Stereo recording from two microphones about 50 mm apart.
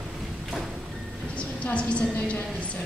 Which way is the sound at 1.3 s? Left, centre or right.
Left.